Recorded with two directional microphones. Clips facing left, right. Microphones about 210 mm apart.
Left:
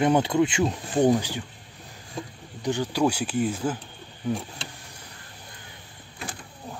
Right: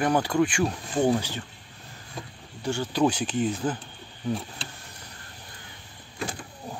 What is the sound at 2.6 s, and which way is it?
Speech, 15° left (ahead or behind).